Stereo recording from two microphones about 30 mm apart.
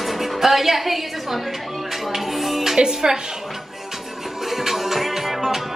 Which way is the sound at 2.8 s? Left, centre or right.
Right.